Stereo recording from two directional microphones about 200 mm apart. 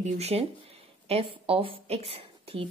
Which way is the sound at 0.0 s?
30° right (ahead or behind).